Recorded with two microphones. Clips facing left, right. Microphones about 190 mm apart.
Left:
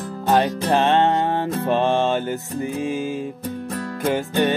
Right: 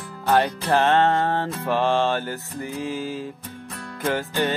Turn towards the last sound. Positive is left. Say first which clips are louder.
# left 4 dB
turn(degrees=20)  # may be behind; listen again after turning